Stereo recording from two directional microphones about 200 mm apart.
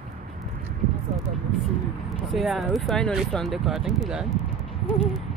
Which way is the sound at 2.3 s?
Centre (ahead or behind).